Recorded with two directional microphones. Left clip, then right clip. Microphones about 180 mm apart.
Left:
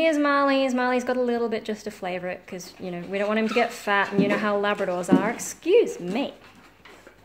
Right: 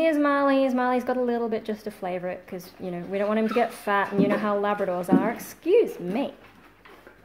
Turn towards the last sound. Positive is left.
turn(degrees=0)  # may be behind; listen again after turning